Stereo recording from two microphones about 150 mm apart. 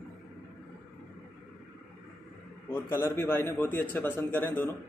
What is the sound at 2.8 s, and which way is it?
A man's voice, 15° left (ahead or behind).